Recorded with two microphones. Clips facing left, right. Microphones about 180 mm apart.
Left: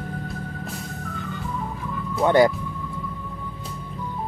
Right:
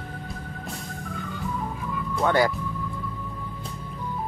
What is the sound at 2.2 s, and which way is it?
Speech, 20° left (ahead or behind).